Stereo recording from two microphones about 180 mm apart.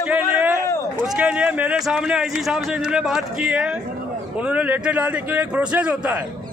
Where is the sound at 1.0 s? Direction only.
5° right (ahead or behind).